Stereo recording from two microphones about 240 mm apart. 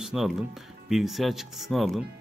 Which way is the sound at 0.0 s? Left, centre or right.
Centre.